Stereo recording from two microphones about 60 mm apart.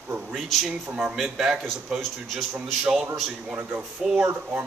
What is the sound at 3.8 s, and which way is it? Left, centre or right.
Speech, centre.